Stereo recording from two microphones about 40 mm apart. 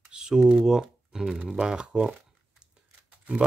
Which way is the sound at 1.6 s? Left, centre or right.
Right.